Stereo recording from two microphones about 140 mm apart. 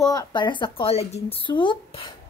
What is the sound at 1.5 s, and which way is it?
Speech, 35° left (ahead or behind).